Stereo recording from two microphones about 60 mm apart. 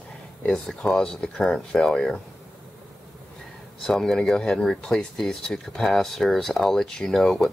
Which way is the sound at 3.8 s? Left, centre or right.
Centre.